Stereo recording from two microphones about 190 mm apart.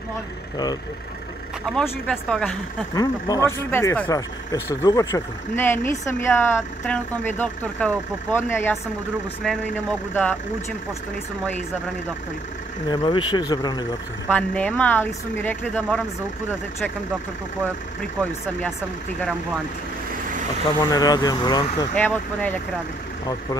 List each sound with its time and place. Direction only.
1.7 s speech: 5° left (ahead or behind)
2.9 s speech: 20° left (ahead or behind)
12.8 s speech: 25° left (ahead or behind)
14.3 s speech: 5° left (ahead or behind)
20.8 s speech: 20° left (ahead or behind)
21.9 s speech: 5° left (ahead or behind)